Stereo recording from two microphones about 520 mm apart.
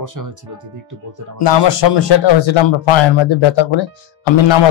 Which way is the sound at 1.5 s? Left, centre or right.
Left.